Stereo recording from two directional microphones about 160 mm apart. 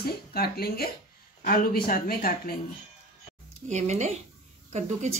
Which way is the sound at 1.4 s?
60° left (ahead or behind).